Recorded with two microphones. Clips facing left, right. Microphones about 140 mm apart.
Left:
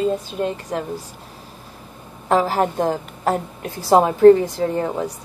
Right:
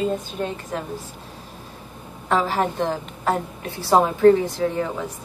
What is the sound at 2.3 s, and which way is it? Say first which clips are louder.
A woman's voice: left 3 dB; 40° left (ahead or behind).